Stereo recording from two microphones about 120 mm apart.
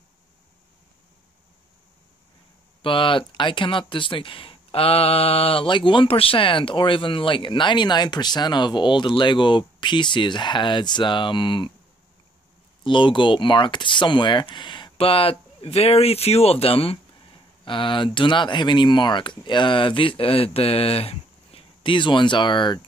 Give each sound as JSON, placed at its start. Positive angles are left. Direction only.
{"t": 2.8, "sound": "speech", "side_deg": 45}
{"t": 12.8, "sound": "speech", "side_deg": 40}